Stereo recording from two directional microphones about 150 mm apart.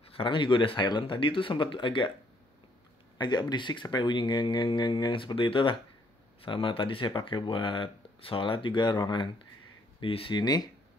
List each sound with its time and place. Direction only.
0.0 s speech: 35° left (ahead or behind)
3.2 s speech: 30° left (ahead or behind)